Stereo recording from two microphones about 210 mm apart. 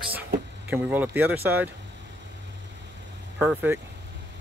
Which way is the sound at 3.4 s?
10° right (ahead or behind).